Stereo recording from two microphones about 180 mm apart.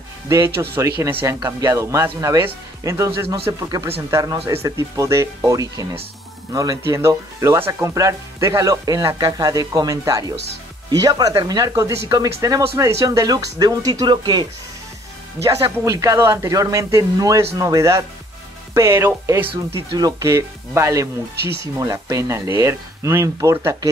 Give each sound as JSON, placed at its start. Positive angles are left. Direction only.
{"t": 0.7, "sound": "speech", "side_deg": -15}